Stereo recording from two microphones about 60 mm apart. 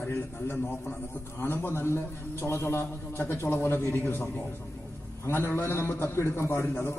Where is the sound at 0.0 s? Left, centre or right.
Left.